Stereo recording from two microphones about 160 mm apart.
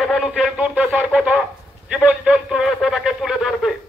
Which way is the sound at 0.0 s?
Centre (ahead or behind).